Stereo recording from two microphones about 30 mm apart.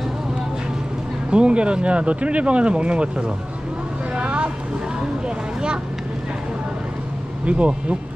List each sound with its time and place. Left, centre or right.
1.3 s speech: right
4.1 s vehicle: right
7.4 s speech: right